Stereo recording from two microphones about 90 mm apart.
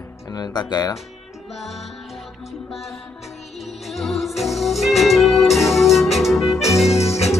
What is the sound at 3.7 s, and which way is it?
Music, centre (ahead or behind).